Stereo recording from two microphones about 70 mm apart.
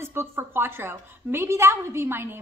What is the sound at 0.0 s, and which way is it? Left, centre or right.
A woman's voice, right.